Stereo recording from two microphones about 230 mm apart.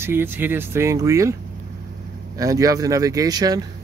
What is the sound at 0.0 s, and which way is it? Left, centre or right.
Speech, centre.